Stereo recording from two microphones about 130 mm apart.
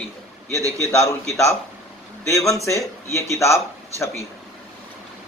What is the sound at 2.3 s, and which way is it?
Speech, 25° left (ahead or behind).